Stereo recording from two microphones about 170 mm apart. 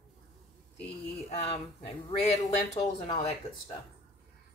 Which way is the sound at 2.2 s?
40° left (ahead or behind).